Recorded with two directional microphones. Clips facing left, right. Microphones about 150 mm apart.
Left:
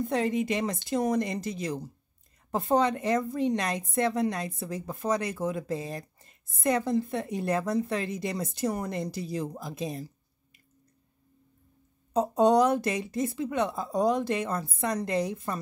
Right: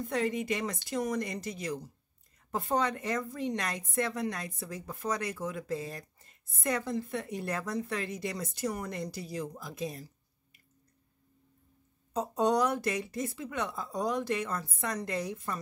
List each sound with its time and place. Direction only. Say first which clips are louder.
0.0 s a woman's voice: left 4 dB; 25° left (ahead or behind)
12.1 s a woman's voice: left 6 dB; 25° left (ahead or behind)